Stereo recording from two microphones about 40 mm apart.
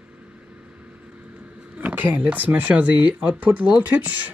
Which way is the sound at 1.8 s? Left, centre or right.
Right.